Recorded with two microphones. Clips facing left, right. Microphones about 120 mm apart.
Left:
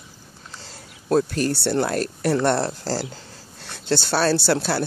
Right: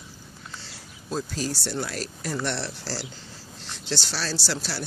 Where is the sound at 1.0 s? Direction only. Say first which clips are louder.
Left 10 dB; 65° left (ahead or behind).